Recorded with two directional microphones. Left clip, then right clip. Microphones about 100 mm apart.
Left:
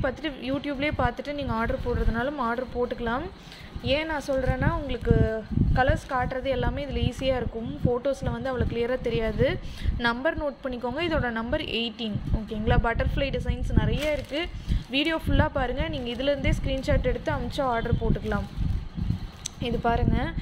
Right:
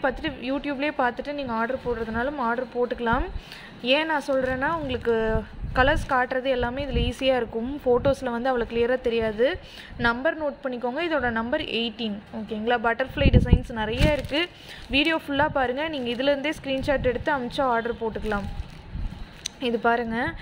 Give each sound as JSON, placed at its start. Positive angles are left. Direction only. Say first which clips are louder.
{"t": 0.0, "sound": "a woman's voice", "louder": "right 3 dB", "side_deg": -15}
{"t": 3.8, "sound": "speech", "louder": "right 4 dB", "side_deg": -35}
{"t": 7.9, "sound": "speech", "louder": "right 6 dB", "side_deg": -45}
{"t": 14.3, "sound": "speech", "louder": "right 4 dB", "side_deg": -40}
{"t": 15.0, "sound": "speech", "louder": "right 3 dB", "side_deg": -25}
{"t": 19.4, "sound": "speech", "louder": "right 4 dB", "side_deg": -30}